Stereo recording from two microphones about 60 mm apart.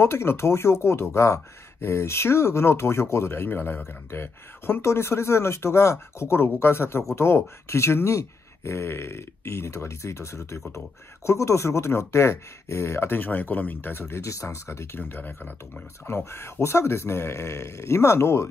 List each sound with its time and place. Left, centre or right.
0.0 s speech: left
13.2 s speech: left
14.3 s speech: left